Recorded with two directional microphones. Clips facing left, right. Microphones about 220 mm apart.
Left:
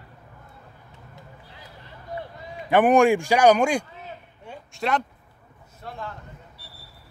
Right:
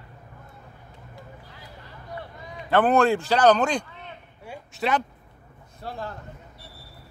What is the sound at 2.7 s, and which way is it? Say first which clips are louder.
A man's voice: left 3 dB; 15° left (ahead or behind).